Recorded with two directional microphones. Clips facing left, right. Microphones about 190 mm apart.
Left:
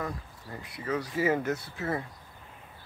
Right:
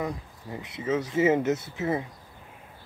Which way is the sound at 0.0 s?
20° right (ahead or behind).